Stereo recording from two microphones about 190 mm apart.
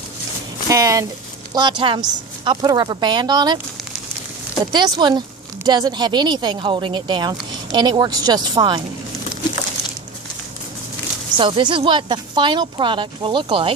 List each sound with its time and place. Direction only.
0.7 s a sound: 15° right (ahead or behind)
1.5 s speech: 20° right (ahead or behind)
4.7 s speech: 20° right (ahead or behind)
11.3 s speech: 25° right (ahead or behind)